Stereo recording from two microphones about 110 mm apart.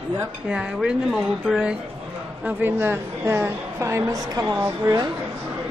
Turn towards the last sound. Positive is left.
turn(degrees=-30)  # may be behind; listen again after turning